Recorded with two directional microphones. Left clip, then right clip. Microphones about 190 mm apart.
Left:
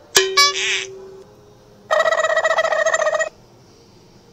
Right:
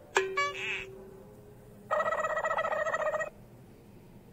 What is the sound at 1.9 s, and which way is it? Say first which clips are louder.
Telephone: left 14 dB; 55° left (ahead or behind).